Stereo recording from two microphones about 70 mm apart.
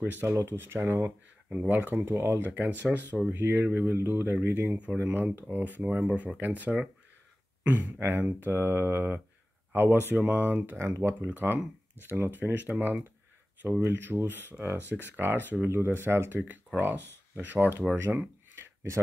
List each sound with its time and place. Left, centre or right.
0.0 s speech: right
1.5 s speech: right
2.5 s speech: right
8.0 s speech: right
10.8 s speech: right
11.1 s speech: right
18.6 s a sound: right